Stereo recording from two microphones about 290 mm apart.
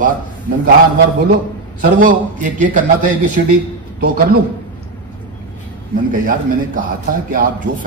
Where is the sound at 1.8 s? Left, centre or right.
Right.